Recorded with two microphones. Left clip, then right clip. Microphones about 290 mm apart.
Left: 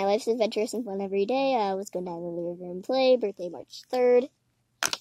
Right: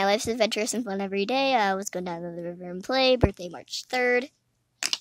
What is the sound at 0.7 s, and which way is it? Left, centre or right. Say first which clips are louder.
Speech: right 2 dB; right.